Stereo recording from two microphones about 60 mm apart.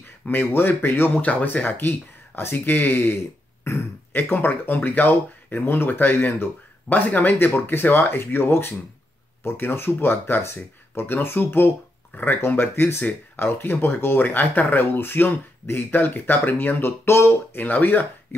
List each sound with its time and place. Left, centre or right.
0.3 s speech: left
3.6 s burping: left
4.2 s speech: left